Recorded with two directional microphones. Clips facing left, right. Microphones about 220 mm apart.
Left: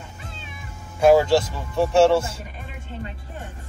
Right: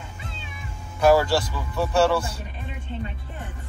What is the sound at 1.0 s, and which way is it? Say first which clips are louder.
Speech: left 3 dB; 25° left (ahead or behind).